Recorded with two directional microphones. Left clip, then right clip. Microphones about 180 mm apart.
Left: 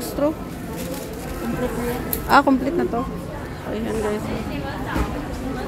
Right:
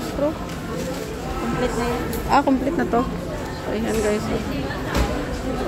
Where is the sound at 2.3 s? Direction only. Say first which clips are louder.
Left 3 dB; 25° left (ahead or behind).